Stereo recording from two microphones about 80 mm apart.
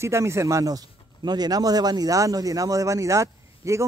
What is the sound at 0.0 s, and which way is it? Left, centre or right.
Speech, right.